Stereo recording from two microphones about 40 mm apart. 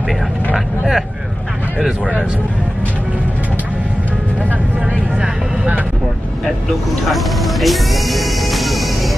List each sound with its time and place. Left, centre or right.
1.9 s speech: right
7.1 s music: centre